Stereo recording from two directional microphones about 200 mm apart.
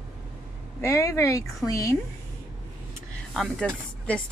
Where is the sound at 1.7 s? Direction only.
15° left (ahead or behind).